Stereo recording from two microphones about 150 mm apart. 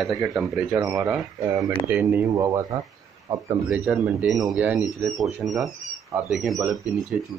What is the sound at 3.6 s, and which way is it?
Speech, 10° right (ahead or behind).